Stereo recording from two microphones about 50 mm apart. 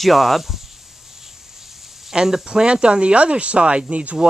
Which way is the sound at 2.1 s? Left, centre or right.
Centre.